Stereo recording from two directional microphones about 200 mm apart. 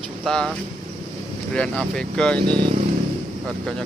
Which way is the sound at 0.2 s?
Centre (ahead or behind).